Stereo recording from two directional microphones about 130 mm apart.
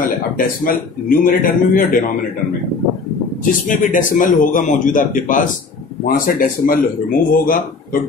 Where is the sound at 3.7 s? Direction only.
90° left.